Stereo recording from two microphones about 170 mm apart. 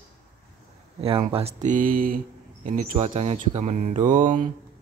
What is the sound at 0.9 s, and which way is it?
Speech, 35° right (ahead or behind).